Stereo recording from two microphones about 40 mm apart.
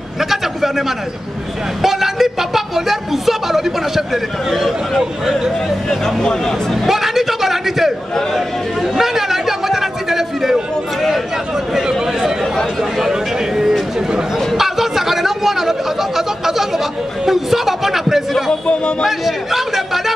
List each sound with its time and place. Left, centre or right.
0.2 s a sound: centre
1.8 s a woman's voice: centre
5.9 s speech: centre
6.9 s a sound: centre
8.4 s chatter: centre
11.7 s a sound: centre
17.3 s a man's voice: centre
18.5 s speech: left
19.0 s a man's voice: centre